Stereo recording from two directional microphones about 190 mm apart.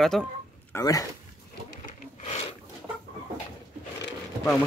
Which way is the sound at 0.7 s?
20° left (ahead or behind).